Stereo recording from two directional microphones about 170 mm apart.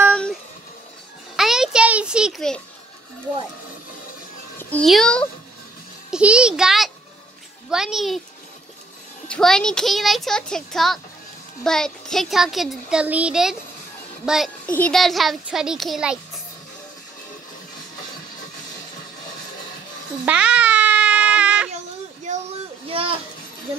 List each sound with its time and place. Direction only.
0.1 s music: 5° left (ahead or behind)
4.6 s a child's voice: 10° left (ahead or behind)
9.3 s speech: 5° left (ahead or behind)
20.2 s baby cry: 5° right (ahead or behind)
22.3 s a sound: 45° right (ahead or behind)
22.8 s children playing: 30° right (ahead or behind)